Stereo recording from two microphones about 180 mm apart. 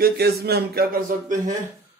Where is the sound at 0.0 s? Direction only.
60° right (ahead or behind).